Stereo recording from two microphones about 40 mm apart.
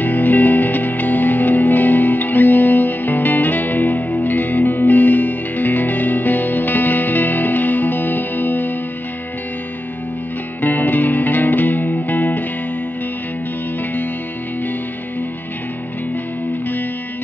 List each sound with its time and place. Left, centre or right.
0.0 s music: left
10.6 s music: left